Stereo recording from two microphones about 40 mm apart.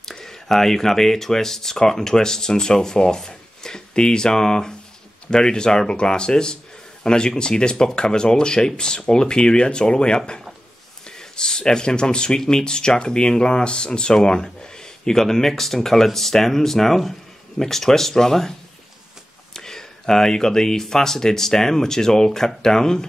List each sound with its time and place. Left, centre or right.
0.0 s speech: centre
19.5 s speech: centre